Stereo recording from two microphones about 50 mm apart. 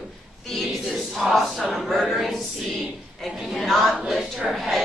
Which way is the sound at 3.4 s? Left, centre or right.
Centre.